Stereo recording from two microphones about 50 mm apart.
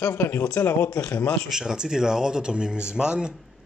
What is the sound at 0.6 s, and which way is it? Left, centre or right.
Speech, left.